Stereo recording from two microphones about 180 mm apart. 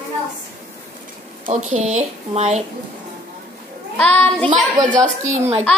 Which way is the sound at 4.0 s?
10° left (ahead or behind).